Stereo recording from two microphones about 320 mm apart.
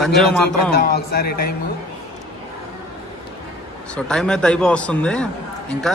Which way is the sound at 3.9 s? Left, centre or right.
Centre.